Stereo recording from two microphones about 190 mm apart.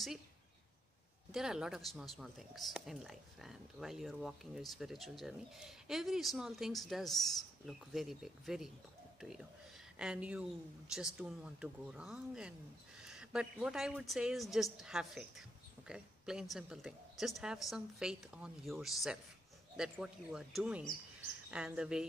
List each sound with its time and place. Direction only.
1.3 s a woman's voice: 5° right (ahead or behind)